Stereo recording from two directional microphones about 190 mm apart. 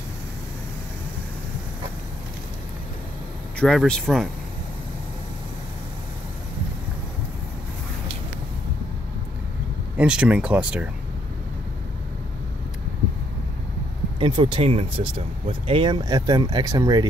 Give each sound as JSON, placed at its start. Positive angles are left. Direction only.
{"t": 3.5, "sound": "speech", "side_deg": 5}
{"t": 9.9, "sound": "speech", "side_deg": -5}
{"t": 14.2, "sound": "speech", "side_deg": -25}